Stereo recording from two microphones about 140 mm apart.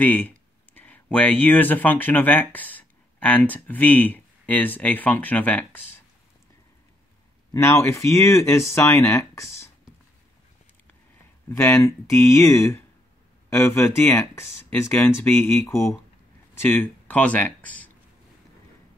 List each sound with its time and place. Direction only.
0.0 s speech: 10° left (ahead or behind)
7.5 s speech: 20° left (ahead or behind)
11.4 s speech: 15° left (ahead or behind)